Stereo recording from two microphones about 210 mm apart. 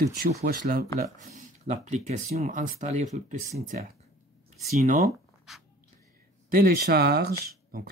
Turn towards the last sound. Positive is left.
turn(degrees=-45)  # may be behind; listen again after turning